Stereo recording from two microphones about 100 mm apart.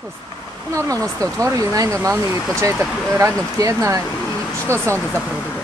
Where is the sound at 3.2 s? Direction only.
30° right (ahead or behind).